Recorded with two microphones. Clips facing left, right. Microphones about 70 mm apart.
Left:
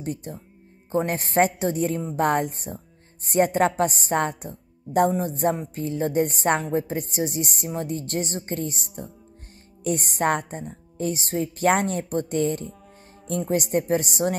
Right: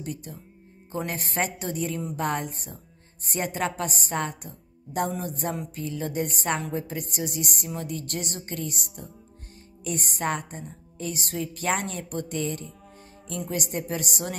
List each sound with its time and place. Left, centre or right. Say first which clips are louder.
0.0 s a woman's voice: left 5 dB; left